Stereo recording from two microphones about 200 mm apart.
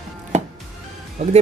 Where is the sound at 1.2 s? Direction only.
35° right (ahead or behind).